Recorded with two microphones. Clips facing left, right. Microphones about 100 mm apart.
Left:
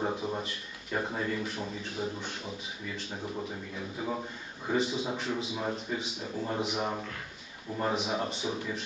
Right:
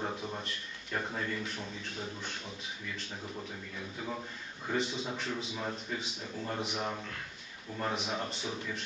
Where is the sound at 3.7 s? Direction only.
15° left (ahead or behind).